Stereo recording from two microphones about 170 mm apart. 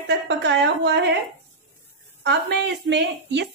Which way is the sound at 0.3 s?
90° right.